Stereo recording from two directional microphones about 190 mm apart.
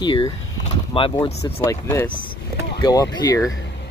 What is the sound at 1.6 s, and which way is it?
Speech, 15° left (ahead or behind).